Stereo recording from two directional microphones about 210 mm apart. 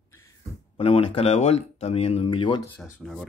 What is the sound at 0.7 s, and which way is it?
Speech, 25° left (ahead or behind).